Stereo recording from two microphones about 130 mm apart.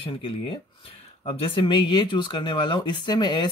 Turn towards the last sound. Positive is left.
turn(degrees=35)  # may be behind; listen again after turning